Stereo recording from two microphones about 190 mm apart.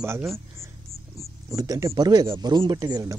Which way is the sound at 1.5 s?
15° right (ahead or behind).